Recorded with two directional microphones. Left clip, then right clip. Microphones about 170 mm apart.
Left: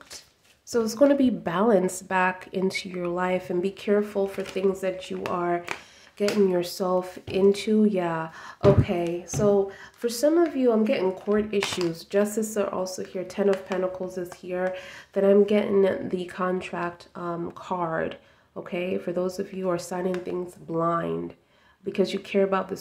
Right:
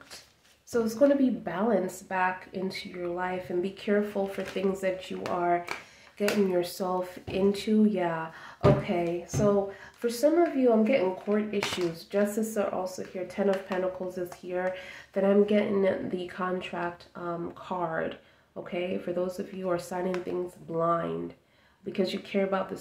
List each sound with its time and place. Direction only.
0.7 s a woman's voice: 35° left (ahead or behind)
13.5 s speech: 30° left (ahead or behind)